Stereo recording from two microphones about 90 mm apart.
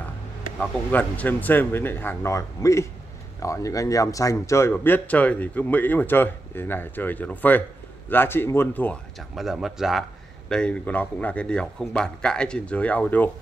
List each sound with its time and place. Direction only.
0.6 s speech: 15° left (ahead or behind)
2.3 s speech: 35° left (ahead or behind)
4.8 s speech: 20° left (ahead or behind)
9.3 s speech: 5° right (ahead or behind)
10.5 s a man's voice: 10° left (ahead or behind)